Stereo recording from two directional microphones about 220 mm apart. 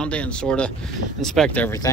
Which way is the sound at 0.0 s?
5° left (ahead or behind).